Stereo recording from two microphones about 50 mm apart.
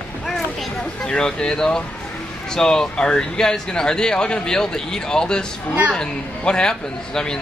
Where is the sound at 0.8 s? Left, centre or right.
Centre.